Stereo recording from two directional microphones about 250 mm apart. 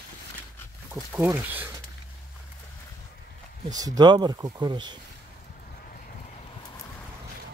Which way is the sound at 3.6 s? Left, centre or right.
Centre.